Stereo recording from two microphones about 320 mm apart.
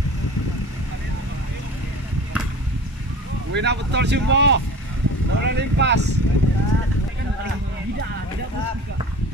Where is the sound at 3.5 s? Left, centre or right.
Right.